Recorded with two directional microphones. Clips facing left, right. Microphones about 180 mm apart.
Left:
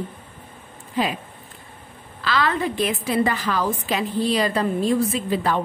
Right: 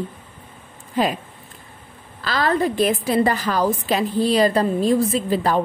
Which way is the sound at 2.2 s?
40° right (ahead or behind).